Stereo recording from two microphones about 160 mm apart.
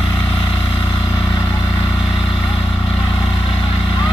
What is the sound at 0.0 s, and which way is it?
Vehicle, 30° left (ahead or behind).